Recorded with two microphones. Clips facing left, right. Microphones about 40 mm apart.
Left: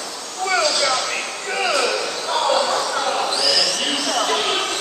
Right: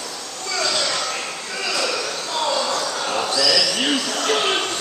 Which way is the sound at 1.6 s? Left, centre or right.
Left.